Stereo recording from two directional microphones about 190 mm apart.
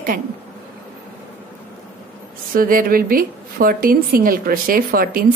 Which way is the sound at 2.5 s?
50° right (ahead or behind).